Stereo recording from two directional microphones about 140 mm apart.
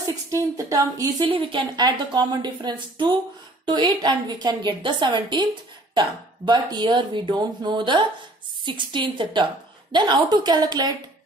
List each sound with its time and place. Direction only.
0.0 s a woman's voice: 25° right (ahead or behind)